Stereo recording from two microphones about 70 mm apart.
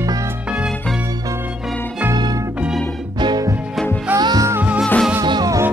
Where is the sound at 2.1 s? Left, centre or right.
Right.